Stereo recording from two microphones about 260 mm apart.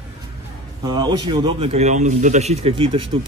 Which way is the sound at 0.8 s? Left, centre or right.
Centre.